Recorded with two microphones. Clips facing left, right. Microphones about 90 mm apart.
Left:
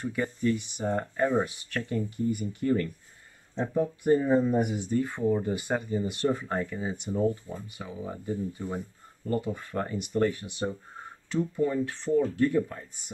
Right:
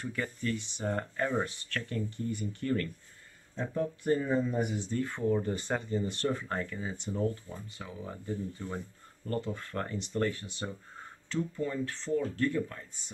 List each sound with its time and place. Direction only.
0.0 s speech: 15° left (ahead or behind)